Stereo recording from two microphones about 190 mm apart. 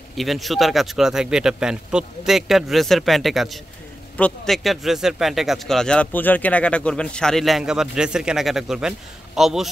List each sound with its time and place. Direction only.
0.1 s speech: centre (ahead or behind)